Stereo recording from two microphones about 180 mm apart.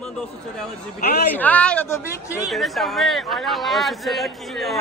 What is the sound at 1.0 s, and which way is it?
Speech, 60° left (ahead or behind).